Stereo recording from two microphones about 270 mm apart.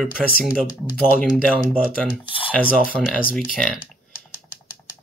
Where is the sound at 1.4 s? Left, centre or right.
Centre.